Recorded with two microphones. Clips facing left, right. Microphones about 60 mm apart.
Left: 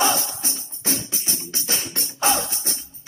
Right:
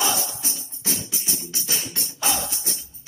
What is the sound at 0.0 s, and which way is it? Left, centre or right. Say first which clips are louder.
Music: left 4 dB; left.